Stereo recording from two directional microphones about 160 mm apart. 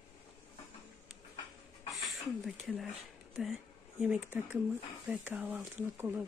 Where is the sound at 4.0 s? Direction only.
5° right (ahead or behind).